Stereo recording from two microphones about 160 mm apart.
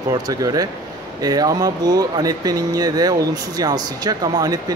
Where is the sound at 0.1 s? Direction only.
20° right (ahead or behind).